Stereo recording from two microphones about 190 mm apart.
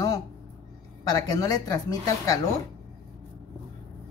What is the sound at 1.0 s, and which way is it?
A woman's voice, 20° left (ahead or behind).